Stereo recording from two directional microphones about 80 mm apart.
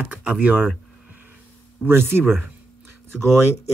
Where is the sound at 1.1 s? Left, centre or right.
Right.